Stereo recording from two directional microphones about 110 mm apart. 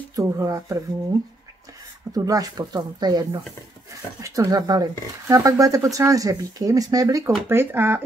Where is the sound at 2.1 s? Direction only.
35° right (ahead or behind).